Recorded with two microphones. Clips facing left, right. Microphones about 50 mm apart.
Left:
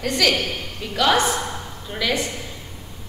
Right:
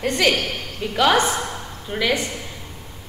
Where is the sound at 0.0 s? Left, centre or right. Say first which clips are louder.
Right 1 dB; right.